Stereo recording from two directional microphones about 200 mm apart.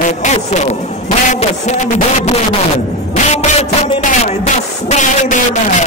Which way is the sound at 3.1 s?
35° left (ahead or behind).